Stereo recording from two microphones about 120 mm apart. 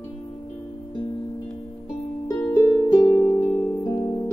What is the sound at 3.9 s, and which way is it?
Music, 35° left (ahead or behind).